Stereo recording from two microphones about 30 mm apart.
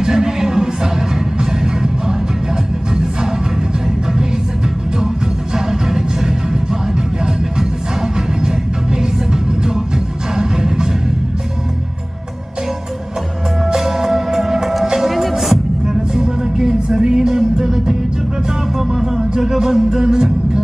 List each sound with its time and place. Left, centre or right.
0.0 s music: centre
8.4 s music: right
13.7 s music: centre
15.9 s music: centre
18.9 s music: centre